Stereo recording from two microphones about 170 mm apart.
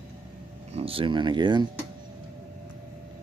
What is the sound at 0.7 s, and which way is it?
Speech, 35° right (ahead or behind).